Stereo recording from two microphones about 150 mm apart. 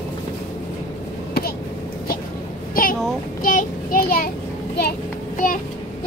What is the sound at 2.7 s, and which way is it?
A child's voice, 70° left (ahead or behind).